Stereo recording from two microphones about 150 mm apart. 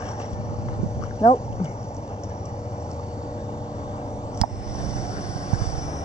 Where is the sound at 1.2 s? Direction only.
40° left (ahead or behind).